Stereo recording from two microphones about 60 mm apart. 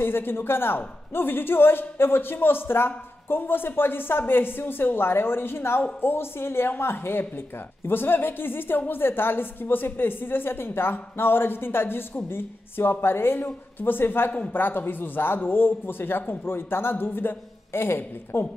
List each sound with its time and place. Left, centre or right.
0.0 s speech: left